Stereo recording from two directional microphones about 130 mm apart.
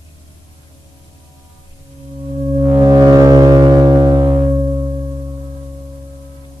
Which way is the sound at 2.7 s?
30° right (ahead or behind).